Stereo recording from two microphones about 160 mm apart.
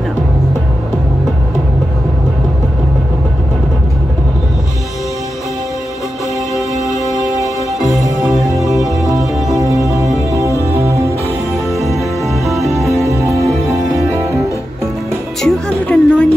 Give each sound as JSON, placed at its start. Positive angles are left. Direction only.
{"t": 7.3, "sound": "music", "side_deg": 0}
{"t": 9.6, "sound": "music", "side_deg": -20}
{"t": 11.7, "sound": "music", "side_deg": 0}
{"t": 14.1, "sound": "music", "side_deg": -20}
{"t": 15.4, "sound": "music", "side_deg": 5}